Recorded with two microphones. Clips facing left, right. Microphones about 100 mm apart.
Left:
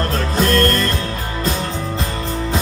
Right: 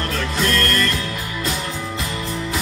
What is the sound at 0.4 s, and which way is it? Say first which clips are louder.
Music: left 5 dB; 35° left (ahead or behind).